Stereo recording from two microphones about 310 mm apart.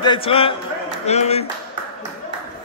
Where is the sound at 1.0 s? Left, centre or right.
Left.